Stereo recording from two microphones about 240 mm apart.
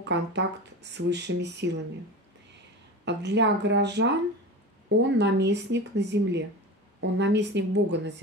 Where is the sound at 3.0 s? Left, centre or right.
Right.